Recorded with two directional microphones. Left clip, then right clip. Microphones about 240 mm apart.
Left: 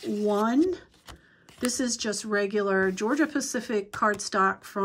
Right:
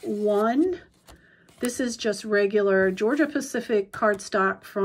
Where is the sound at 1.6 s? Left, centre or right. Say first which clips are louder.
Right 2 dB; centre.